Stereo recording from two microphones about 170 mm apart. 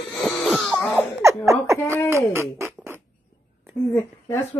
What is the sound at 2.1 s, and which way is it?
Music, 15° right (ahead or behind).